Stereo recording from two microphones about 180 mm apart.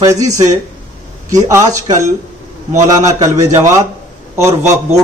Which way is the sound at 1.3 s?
15° right (ahead or behind).